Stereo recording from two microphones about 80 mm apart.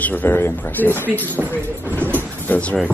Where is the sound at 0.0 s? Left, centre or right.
Left.